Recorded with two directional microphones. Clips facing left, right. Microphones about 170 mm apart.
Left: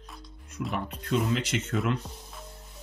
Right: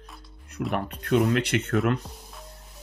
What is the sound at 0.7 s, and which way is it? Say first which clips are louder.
Speech: right 5 dB; 65° right (ahead or behind).